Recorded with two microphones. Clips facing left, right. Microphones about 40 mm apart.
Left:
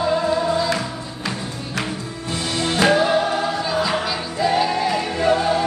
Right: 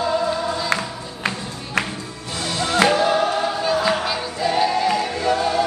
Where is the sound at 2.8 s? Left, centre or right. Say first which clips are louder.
Left 1 dB; centre.